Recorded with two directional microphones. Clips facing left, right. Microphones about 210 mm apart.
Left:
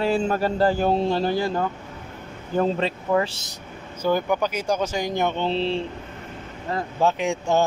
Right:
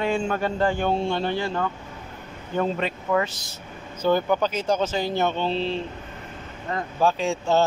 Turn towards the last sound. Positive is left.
turn(degrees=15)  # may be behind; listen again after turning